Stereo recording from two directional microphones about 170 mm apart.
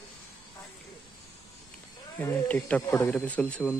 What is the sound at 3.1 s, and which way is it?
Speech, 5° left (ahead or behind).